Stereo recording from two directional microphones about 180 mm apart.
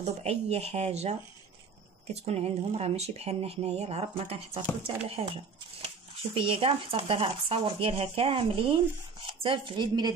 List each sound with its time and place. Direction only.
0.0 s speech: 35° right (ahead or behind)
2.2 s speech: 35° right (ahead or behind)